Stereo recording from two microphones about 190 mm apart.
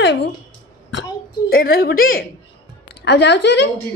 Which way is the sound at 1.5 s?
50° left (ahead or behind).